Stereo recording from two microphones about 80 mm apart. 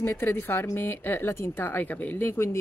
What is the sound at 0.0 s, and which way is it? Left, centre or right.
A woman's voice, left.